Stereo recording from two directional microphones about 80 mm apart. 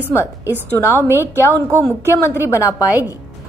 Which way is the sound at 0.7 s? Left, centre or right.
Left.